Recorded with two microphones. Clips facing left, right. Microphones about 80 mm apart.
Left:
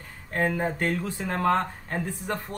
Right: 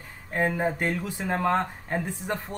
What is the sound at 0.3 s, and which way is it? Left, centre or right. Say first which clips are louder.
Speech: right 1 dB; centre.